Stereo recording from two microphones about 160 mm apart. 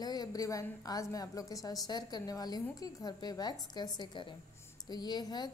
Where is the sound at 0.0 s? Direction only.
25° left (ahead or behind).